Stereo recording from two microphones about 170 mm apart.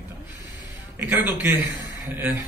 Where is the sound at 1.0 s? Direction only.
15° right (ahead or behind).